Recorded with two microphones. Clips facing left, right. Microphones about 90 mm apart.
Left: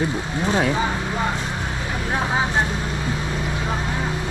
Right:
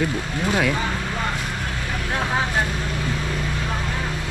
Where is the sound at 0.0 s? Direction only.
30° left (ahead or behind).